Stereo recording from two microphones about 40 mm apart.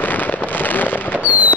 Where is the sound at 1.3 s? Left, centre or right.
Right.